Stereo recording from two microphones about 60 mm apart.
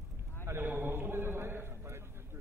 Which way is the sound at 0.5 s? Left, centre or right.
Right.